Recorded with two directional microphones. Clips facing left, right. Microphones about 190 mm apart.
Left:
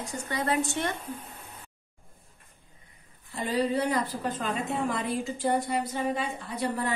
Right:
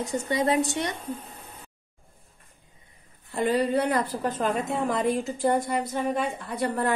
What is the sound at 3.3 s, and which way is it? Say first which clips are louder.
Speech: right 4 dB; 60° right (ahead or behind).